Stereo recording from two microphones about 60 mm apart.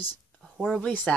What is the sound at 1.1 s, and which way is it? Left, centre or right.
Speech, centre.